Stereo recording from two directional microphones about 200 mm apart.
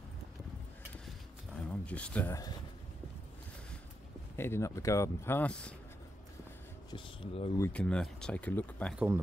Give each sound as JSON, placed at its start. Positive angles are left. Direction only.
{"t": 1.9, "sound": "speech", "side_deg": 5}
{"t": 4.4, "sound": "speech", "side_deg": 15}
{"t": 6.9, "sound": "speech", "side_deg": 30}
{"t": 7.5, "sound": "speech", "side_deg": 10}
{"t": 8.9, "sound": "speech", "side_deg": -10}